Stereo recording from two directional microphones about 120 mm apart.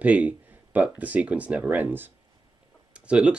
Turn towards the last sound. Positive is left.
turn(degrees=-10)  # may be behind; listen again after turning